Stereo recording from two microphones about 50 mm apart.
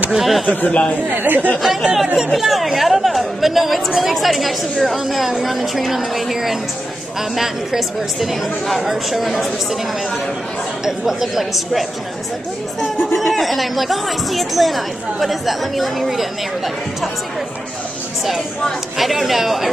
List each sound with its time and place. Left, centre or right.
0.1 s speech: centre
0.7 s speech: left
1.1 s speech: right
1.6 s speech: centre
10.9 s speech: centre
13.2 s speech: centre
18.9 s speech: centre